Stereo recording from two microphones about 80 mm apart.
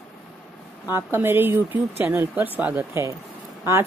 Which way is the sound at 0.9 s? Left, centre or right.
Right.